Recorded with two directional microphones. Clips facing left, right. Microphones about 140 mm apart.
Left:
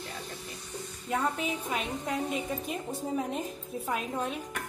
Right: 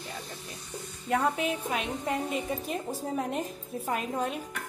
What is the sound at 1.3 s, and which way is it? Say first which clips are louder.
A woman's voice: right 2 dB; centre (ahead or behind).